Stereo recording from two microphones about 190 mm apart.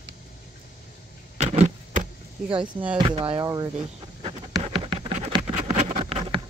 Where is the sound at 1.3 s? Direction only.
35° right (ahead or behind).